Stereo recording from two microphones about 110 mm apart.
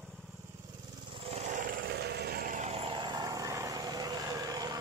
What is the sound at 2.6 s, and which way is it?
Vehicle, 65° right (ahead or behind).